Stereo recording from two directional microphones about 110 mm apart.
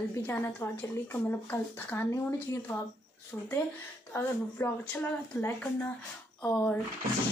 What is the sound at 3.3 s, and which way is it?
Speech, 15° left (ahead or behind).